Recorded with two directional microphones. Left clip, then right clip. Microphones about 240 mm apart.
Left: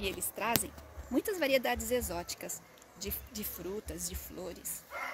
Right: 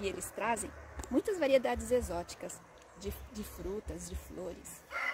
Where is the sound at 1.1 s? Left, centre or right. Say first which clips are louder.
Right 1 dB; right.